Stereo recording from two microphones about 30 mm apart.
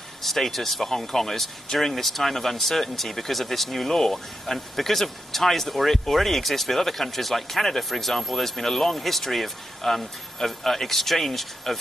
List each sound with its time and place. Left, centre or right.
0.2 s speech: centre